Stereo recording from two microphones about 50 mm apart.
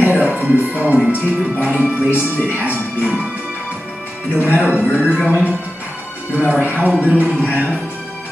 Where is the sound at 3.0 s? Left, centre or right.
Right.